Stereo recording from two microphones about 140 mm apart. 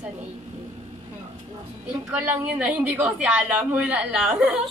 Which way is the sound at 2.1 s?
10° right (ahead or behind).